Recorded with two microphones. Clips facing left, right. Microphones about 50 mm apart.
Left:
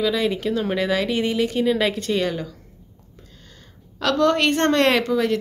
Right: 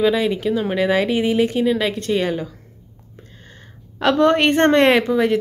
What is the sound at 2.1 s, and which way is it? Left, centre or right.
Speech, centre.